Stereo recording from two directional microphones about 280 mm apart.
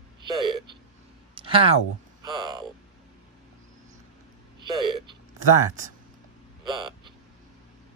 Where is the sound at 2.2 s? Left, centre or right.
Centre.